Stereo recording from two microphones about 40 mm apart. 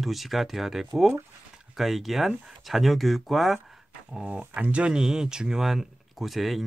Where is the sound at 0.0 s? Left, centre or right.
Centre.